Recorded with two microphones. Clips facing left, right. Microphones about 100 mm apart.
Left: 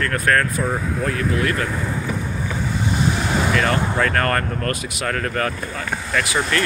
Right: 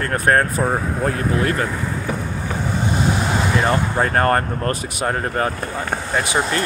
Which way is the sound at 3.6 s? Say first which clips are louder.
Right 1 dB; 25° right (ahead or behind).